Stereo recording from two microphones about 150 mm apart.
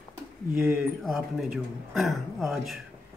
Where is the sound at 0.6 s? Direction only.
5° right (ahead or behind).